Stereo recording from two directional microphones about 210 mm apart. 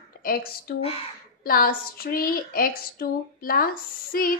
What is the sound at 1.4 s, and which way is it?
A woman's voice, 45° left (ahead or behind).